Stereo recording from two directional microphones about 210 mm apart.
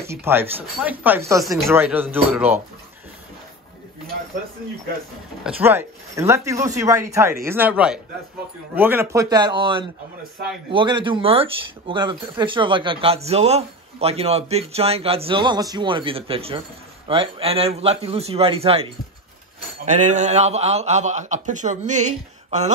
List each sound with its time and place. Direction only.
0.0 s speech: 10° right (ahead or behind)
5.4 s a man's voice: 10° right (ahead or behind); by 22.7 s 35° right (ahead or behind)